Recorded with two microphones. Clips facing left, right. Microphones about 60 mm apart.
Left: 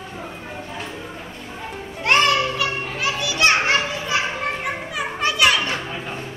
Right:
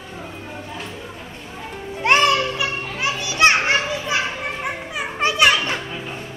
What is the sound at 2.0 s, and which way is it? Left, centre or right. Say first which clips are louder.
Children playing: right 1 dB; centre.